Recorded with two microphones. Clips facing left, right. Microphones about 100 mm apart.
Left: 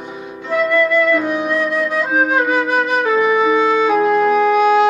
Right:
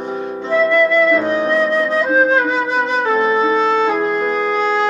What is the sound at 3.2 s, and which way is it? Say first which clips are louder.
Music: left 1 dB; 15° left (ahead or behind).